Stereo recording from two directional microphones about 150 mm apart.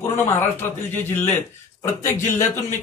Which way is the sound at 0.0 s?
15° left (ahead or behind).